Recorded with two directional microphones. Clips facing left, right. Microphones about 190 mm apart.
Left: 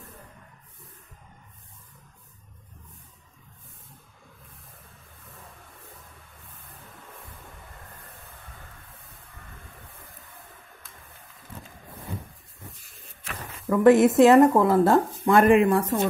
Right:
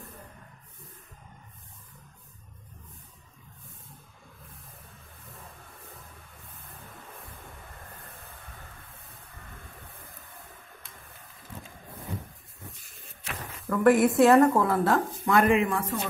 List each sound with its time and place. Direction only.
13.7 s speech: 20° left (ahead or behind)
15.4 s speech: 55° left (ahead or behind)